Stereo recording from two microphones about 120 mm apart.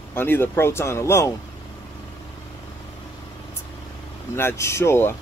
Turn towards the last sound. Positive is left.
turn(degrees=20)  # may be behind; listen again after turning